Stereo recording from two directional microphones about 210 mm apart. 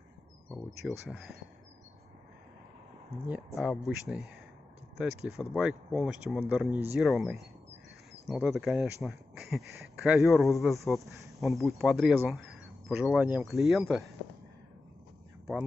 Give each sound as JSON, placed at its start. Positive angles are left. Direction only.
{"t": 0.5, "sound": "speech", "side_deg": 0}
{"t": 3.5, "sound": "speech", "side_deg": 0}
{"t": 4.9, "sound": "speech", "side_deg": 0}